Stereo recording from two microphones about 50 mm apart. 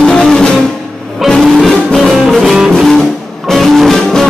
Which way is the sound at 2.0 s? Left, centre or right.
Centre.